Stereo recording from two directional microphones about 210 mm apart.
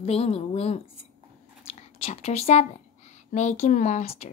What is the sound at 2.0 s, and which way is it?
Speech, 30° left (ahead or behind).